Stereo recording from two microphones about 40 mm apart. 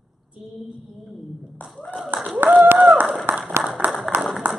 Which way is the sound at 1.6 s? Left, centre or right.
Left.